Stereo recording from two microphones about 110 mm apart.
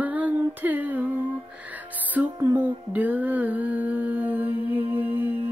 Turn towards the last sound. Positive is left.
turn(degrees=-20)  # may be behind; listen again after turning